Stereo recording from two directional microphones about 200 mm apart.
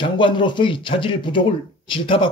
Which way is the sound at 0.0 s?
25° left (ahead or behind).